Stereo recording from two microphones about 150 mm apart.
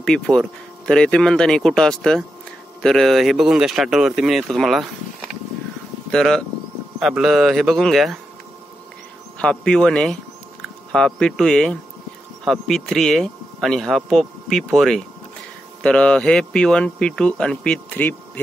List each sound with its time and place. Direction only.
0.0 s speech: 5° left (ahead or behind)
6.1 s speech: 5° left (ahead or behind)
9.4 s speech: 5° left (ahead or behind)